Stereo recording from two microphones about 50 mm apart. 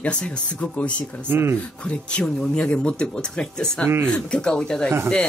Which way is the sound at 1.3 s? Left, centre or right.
Right.